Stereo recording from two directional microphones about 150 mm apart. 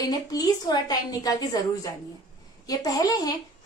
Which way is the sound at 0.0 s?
25° left (ahead or behind).